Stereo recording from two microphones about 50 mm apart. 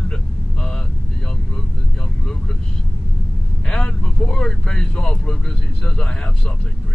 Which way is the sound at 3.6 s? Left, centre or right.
Centre.